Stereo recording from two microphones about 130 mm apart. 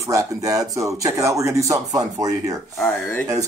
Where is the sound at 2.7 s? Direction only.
10° left (ahead or behind).